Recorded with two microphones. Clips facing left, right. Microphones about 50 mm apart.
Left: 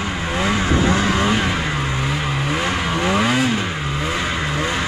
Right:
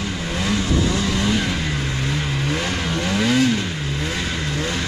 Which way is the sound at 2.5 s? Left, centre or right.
Centre.